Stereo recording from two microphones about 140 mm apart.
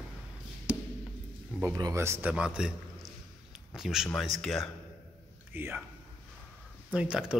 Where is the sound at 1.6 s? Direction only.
25° right (ahead or behind).